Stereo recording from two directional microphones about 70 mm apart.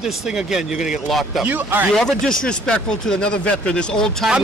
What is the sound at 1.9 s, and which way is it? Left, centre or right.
Speech, centre.